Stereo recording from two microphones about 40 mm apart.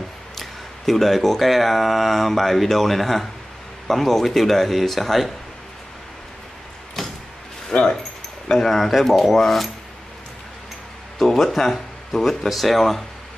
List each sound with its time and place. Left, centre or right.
0.4 s speech: centre
7.0 s vehicle: centre
7.7 s speech: centre
11.1 s speech: centre